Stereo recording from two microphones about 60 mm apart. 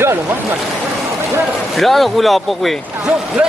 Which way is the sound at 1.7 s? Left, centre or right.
Centre.